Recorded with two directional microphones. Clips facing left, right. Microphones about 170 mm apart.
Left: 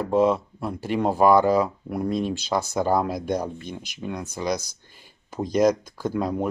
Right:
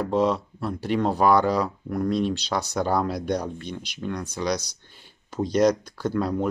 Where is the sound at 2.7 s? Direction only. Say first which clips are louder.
Left 1 dB; 5° left (ahead or behind).